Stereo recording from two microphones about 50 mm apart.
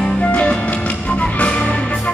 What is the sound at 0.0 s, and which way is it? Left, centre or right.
Music, left.